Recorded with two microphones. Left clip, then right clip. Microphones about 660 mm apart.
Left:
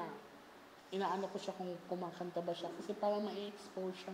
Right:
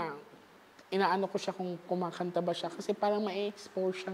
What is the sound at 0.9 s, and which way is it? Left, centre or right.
A woman's voice, right.